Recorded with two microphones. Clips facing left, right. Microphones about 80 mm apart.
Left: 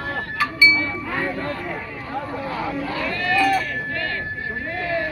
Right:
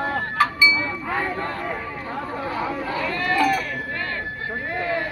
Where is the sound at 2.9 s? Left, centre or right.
Right.